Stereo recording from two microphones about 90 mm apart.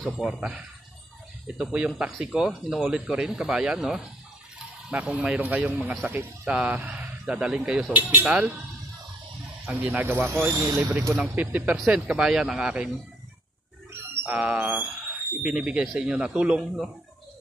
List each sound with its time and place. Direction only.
0.0 s speech: centre (ahead or behind)
0.4 s speech: 10° right (ahead or behind)
7.9 s speech: 20° right (ahead or behind)
9.7 s speech: 20° right (ahead or behind); by 10.9 s 35° right (ahead or behind)
11.1 s speech: 15° right (ahead or behind)
14.2 s speech: 10° right (ahead or behind)